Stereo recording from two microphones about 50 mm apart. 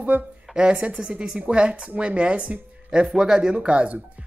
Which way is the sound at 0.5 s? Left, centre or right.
Right.